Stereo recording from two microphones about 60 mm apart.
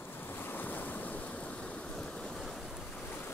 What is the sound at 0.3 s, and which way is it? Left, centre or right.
Waves, left.